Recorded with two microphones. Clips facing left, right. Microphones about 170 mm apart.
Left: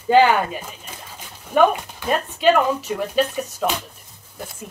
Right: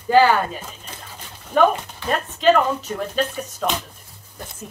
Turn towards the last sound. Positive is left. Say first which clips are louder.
# left 2 dB
turn(degrees=10)  # may be behind; listen again after turning